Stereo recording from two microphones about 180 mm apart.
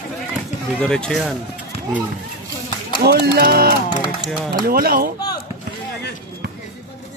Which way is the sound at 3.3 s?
60° right (ahead or behind).